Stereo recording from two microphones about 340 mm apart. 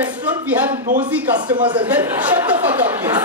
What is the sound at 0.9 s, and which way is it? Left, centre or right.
Speech, centre.